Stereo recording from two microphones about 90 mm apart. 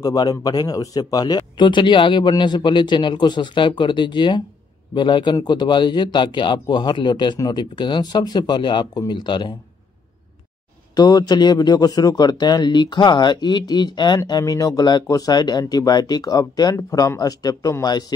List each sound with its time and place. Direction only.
0.0 s speech: 45° left (ahead or behind)
11.0 s speech: 50° left (ahead or behind)